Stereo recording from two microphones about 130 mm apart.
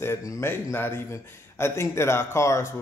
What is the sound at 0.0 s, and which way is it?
A man's voice, 25° left (ahead or behind).